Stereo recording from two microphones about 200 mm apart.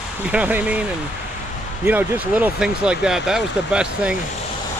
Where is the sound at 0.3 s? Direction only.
5° right (ahead or behind).